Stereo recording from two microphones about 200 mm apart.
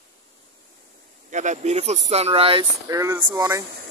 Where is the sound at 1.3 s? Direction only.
35° right (ahead or behind); by 3.6 s 20° right (ahead or behind).